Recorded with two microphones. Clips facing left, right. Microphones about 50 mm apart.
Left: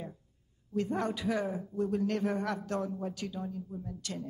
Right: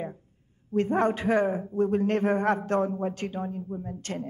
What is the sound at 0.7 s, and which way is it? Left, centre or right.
A woman's voice, right.